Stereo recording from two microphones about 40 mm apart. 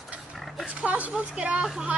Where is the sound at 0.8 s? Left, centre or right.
Right.